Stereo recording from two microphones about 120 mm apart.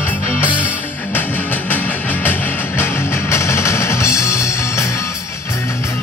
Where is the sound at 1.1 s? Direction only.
15° left (ahead or behind).